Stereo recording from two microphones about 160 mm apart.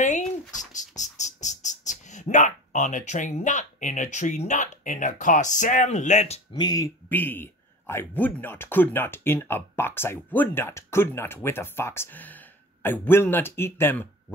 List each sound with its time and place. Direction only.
0.6 s speech: 50° left (ahead or behind)
6.5 s speech: 25° left (ahead or behind)
7.1 s speech: 10° left (ahead or behind)